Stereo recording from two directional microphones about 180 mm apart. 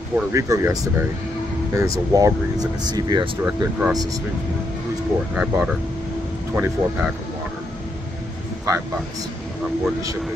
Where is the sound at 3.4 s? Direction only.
10° right (ahead or behind).